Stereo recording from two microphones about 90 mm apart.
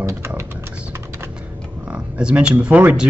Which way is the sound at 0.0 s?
35° right (ahead or behind).